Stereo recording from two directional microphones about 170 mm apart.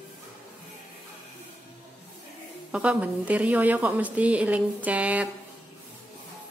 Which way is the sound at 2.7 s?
5° right (ahead or behind).